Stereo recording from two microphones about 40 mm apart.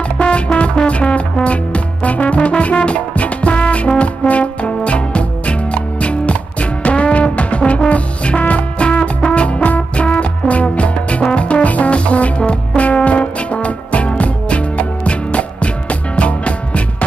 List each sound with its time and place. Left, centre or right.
0.2 s music: left